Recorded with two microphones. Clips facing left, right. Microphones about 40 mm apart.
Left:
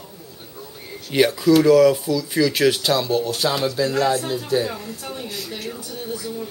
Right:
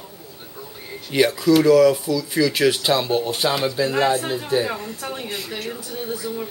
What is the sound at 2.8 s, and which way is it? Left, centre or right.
Speech, right.